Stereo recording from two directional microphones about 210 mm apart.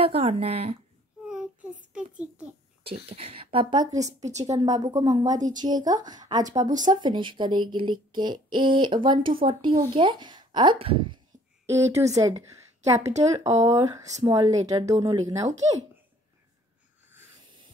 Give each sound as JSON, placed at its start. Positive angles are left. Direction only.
{"t": 0.0, "sound": "speech", "side_deg": -30}
{"t": 1.3, "sound": "child singing", "side_deg": -5}
{"t": 2.8, "sound": "speech", "side_deg": -25}
{"t": 4.2, "sound": "a woman's voice", "side_deg": -35}
{"t": 4.5, "sound": "speech", "side_deg": -15}